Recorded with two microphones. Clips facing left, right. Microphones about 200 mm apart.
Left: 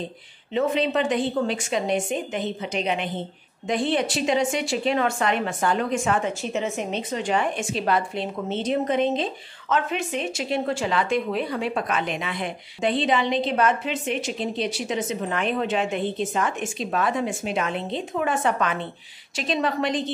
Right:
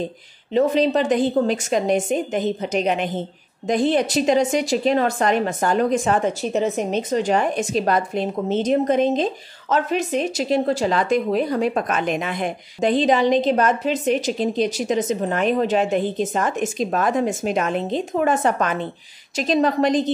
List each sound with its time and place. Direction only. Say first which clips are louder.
0.5 s a woman's voice: right 5 dB; 40° right (ahead or behind)